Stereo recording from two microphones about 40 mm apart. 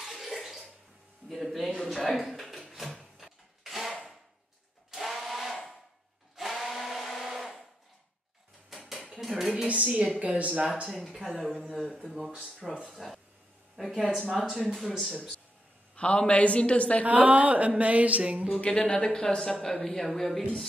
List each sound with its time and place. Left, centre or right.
0.0 s bathtub: centre
1.3 s a man's voice: centre
3.0 s a sound: centre
4.9 s a sound: centre
8.6 s dishes: centre
9.1 s a sound: centre
9.8 s speech: right
10.9 s a woman's voice: centre
16.0 s a woman's voice: left
17.0 s speech: right
18.2 s a sound: right
18.6 s speech: left
19.0 s speech: centre